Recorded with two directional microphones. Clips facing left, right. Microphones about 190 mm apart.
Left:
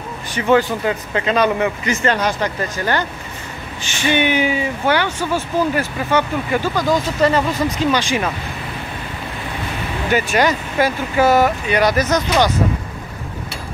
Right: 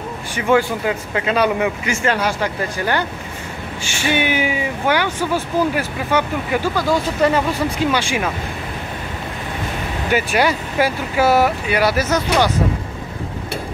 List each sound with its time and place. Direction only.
0.3 s speech: 10° right (ahead or behind)
10.1 s speech: 10° right (ahead or behind)